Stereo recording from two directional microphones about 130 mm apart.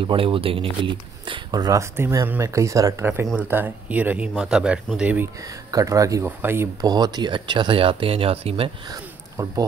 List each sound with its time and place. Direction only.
0.0 s speech: 45° right (ahead or behind); by 5.3 s 15° right (ahead or behind)
5.4 s speech: 25° right (ahead or behind)
6.9 s speech: 30° right (ahead or behind); by 8.7 s 45° right (ahead or behind)
8.8 s speech: 30° right (ahead or behind)